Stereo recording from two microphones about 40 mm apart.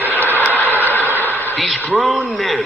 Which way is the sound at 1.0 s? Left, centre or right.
Right.